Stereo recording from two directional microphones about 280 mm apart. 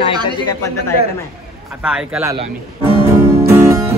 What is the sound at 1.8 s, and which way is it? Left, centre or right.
Speech, centre.